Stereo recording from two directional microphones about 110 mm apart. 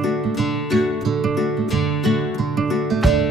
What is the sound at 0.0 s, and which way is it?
Music, centre (ahead or behind).